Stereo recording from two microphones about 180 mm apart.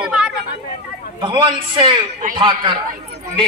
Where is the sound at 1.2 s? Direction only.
25° right (ahead or behind).